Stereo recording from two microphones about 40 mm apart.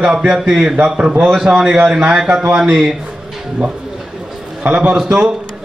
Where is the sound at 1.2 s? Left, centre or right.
Centre.